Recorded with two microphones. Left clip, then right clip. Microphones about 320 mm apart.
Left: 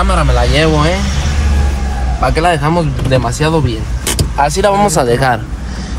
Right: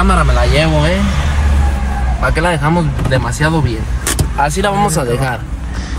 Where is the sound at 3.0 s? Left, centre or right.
Centre.